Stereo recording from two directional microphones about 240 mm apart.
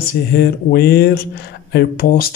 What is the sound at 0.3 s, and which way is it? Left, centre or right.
Speech, left.